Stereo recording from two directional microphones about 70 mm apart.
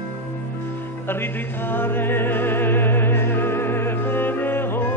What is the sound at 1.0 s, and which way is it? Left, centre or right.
Music, left.